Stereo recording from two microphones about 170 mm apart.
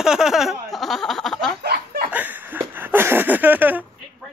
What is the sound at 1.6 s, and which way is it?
Snicker, 65° right (ahead or behind).